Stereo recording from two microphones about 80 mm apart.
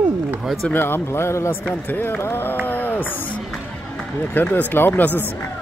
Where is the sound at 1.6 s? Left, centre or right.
Left.